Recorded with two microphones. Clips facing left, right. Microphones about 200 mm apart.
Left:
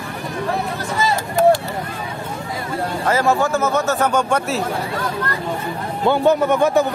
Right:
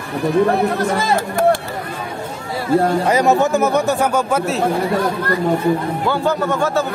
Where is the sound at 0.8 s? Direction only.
55° right (ahead or behind).